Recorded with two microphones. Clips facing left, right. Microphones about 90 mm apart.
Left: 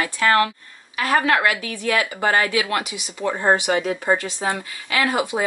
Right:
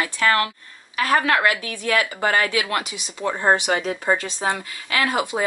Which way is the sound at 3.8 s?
20° left (ahead or behind).